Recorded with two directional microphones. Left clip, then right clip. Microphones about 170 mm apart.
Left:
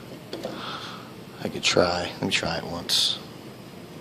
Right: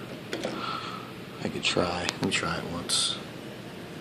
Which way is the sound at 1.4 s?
15° left (ahead or behind).